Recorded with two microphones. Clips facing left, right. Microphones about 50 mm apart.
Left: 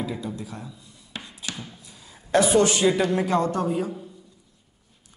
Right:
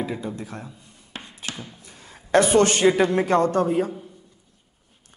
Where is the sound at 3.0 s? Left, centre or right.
Right.